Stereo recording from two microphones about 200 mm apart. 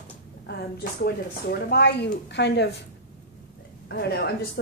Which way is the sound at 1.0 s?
55° left (ahead or behind).